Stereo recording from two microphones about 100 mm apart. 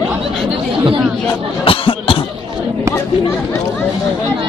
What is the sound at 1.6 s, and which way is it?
Cough, 65° left (ahead or behind).